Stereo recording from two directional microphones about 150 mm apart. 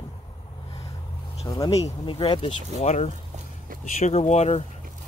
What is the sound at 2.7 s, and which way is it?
Speech, 50° left (ahead or behind).